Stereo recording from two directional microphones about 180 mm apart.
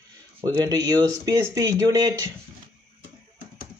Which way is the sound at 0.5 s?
25° right (ahead or behind).